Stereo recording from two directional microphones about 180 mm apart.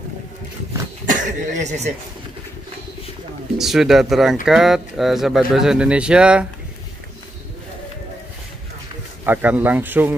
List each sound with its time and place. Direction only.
1.0 s speech: 45° right (ahead or behind)
3.5 s speech: centre (ahead or behind)
9.2 s speech: 10° right (ahead or behind)